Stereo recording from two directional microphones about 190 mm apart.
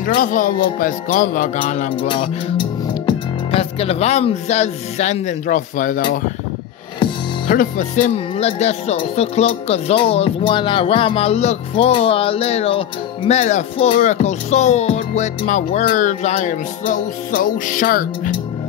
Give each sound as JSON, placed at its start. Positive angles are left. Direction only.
{"t": 0.0, "sound": "music", "side_deg": 45}
{"t": 2.5, "sound": "speech", "side_deg": 25}
{"t": 7.4, "sound": "speech", "side_deg": 40}